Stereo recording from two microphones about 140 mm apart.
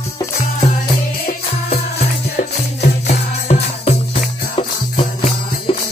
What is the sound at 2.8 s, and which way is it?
Music, 50° left (ahead or behind).